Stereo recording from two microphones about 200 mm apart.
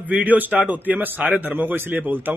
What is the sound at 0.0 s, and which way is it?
A man's voice, 10° right (ahead or behind).